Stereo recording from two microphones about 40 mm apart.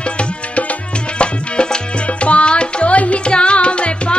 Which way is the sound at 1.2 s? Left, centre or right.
Left.